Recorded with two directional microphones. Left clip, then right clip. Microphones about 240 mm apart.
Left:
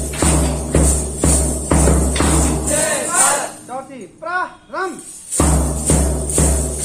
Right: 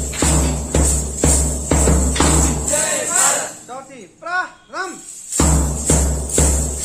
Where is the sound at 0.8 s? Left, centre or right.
Right.